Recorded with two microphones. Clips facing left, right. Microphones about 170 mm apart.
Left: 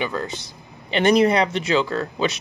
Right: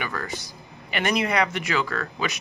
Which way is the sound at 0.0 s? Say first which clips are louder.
Left 5 dB; 20° left (ahead or behind).